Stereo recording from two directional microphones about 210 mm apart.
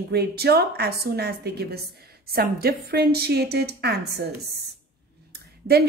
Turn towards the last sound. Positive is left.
turn(degrees=-50)  # may be behind; listen again after turning